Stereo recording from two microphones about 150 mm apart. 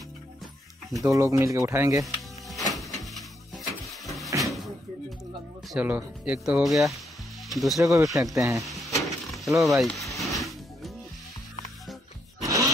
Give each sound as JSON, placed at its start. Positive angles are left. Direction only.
{"t": 1.0, "sound": "speech", "side_deg": -20}
{"t": 2.5, "sound": "music", "side_deg": 0}
{"t": 5.7, "sound": "speech", "side_deg": -10}
{"t": 7.8, "sound": "speech", "side_deg": -20}
{"t": 8.1, "sound": "speech", "side_deg": 0}
{"t": 8.4, "sound": "speech", "side_deg": -20}
{"t": 8.6, "sound": "a sound", "side_deg": 0}
{"t": 9.7, "sound": "music", "side_deg": 0}
{"t": 12.4, "sound": "a sound", "side_deg": -20}